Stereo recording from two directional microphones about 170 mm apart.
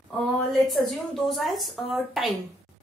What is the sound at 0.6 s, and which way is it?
A woman's voice, centre (ahead or behind).